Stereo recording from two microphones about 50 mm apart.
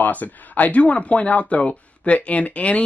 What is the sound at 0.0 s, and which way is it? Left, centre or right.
Speech, left.